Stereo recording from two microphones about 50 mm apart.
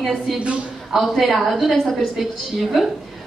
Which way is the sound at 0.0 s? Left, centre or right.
Centre.